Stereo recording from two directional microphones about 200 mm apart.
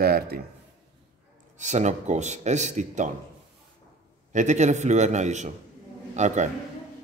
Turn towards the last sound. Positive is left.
turn(degrees=-35)  # may be behind; listen again after turning